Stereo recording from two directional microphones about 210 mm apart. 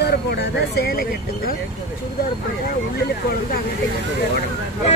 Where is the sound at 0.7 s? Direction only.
45° left (ahead or behind).